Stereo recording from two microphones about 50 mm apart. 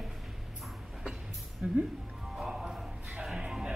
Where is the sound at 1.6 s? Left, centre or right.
Right.